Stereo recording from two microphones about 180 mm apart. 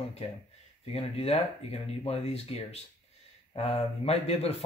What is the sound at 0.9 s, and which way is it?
A man's voice, 35° left (ahead or behind).